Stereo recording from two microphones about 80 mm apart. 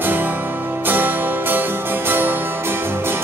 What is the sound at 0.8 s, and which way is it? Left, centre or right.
Music, right.